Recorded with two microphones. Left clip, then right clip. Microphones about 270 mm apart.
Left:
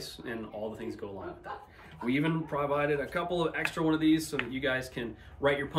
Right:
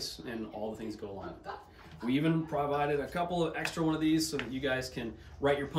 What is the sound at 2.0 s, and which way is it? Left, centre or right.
Speech, centre.